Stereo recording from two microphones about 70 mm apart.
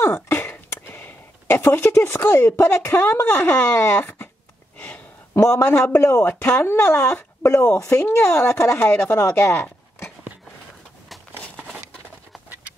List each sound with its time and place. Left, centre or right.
0.0 s speech: left
5.3 s speech: left
7.7 s speech: left
11.5 s a sound: centre